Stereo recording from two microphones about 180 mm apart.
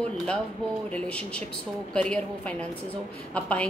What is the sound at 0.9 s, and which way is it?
A woman's voice, 5° left (ahead or behind).